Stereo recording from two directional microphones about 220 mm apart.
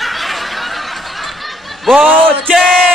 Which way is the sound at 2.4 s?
Centre (ahead or behind).